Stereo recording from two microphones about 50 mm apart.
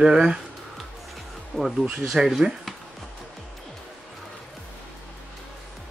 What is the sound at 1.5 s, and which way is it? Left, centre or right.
Speech, centre.